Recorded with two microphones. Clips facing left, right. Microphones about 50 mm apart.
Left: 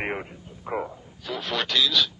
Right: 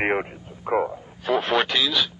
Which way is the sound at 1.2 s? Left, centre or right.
Right.